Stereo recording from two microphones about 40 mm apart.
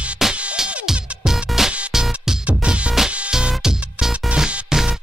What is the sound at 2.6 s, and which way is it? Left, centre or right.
Music, right.